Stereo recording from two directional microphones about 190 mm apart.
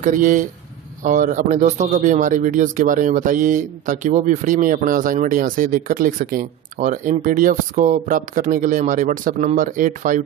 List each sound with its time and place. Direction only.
0.0 s speech: 45° right (ahead or behind)